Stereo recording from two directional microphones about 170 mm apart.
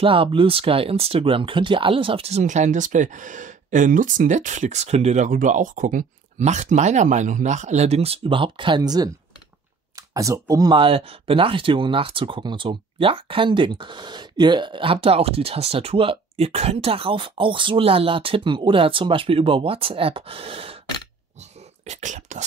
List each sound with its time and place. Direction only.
0.0 s speech: 30° right (ahead or behind)
21.4 s whispering: 40° right (ahead or behind)